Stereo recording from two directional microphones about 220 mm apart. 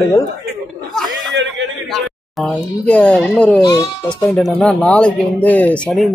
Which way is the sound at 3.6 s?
20° left (ahead or behind).